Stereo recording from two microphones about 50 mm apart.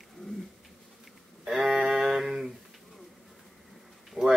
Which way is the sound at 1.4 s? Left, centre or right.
Centre.